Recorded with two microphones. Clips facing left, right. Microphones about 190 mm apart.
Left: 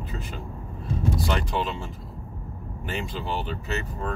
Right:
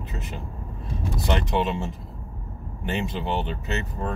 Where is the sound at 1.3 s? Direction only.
25° right (ahead or behind).